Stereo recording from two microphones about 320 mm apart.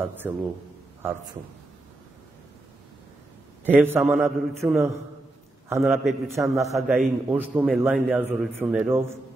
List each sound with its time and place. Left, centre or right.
0.2 s a man's voice: centre
3.6 s a man's voice: centre